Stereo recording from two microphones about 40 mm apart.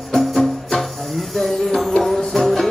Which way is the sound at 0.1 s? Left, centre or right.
Centre.